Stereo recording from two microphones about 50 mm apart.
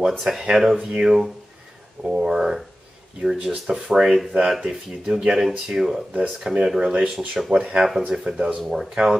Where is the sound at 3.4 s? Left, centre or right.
Right.